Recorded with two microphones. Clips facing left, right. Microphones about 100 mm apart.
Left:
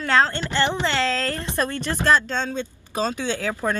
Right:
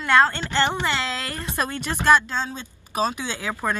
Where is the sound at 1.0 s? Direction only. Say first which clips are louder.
Left 5 dB; 15° right (ahead or behind).